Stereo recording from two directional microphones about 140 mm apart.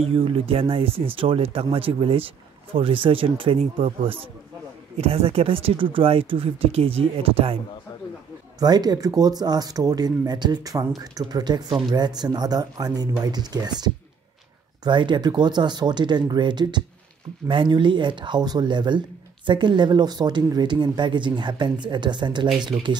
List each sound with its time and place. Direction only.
0.1 s speech: 40° right (ahead or behind)
8.5 s speech: 30° right (ahead or behind)